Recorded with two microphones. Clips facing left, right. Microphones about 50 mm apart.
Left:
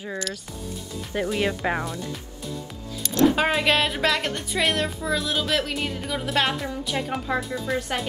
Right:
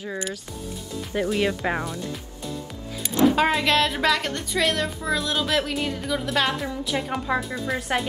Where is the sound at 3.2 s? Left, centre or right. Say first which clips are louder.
Right 1 dB; centre.